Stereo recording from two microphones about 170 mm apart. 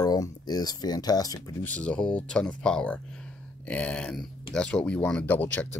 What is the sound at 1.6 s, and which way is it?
Speech, 10° left (ahead or behind).